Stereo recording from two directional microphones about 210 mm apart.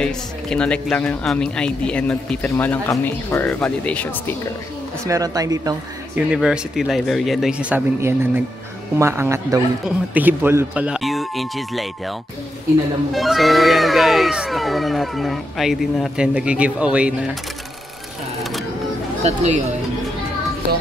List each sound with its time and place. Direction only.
0.0 s speech: 5° left (ahead or behind)
5.0 s a man's voice: 15° right (ahead or behind)
6.1 s a man's voice: 5° right (ahead or behind)
13.1 s speech: centre (ahead or behind)
19.2 s speech: 30° right (ahead or behind)